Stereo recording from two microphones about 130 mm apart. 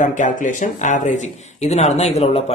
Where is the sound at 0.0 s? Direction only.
80° left.